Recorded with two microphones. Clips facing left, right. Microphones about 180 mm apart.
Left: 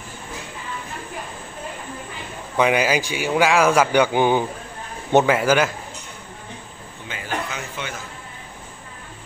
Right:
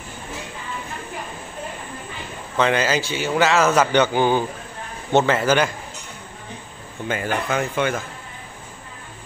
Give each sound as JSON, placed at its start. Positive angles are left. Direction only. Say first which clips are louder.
{"t": 2.5, "sound": "a man's voice", "louder": "left 1 dB", "side_deg": 15}
{"t": 7.1, "sound": "speech", "louder": "right 5 dB", "side_deg": -50}